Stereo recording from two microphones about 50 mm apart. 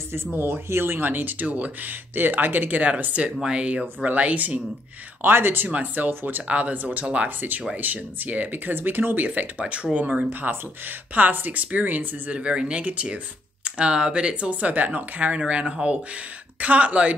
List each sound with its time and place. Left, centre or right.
0.7 s speech: right
5.2 s speech: right
5.7 s speech: right
7.2 s speech: right
10.5 s speech: right
12.4 s speech: right
16.5 s speech: right